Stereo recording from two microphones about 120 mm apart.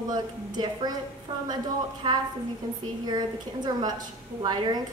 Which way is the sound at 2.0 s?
35° right (ahead or behind).